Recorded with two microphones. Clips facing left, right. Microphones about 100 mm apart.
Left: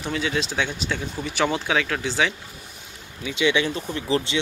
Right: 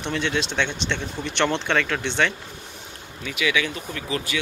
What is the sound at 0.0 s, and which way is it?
Speech, 5° left (ahead or behind).